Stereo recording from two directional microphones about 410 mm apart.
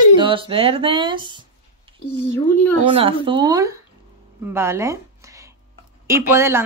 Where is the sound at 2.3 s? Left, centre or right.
Centre.